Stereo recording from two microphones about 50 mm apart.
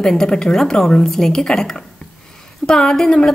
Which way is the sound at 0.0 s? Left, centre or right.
Centre.